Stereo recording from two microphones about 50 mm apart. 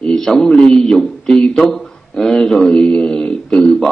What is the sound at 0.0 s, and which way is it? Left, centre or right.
A man's voice, centre.